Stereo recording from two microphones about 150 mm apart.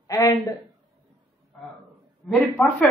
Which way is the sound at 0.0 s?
25° left (ahead or behind).